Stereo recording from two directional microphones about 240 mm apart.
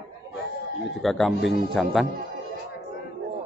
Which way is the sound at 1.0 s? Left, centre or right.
Centre.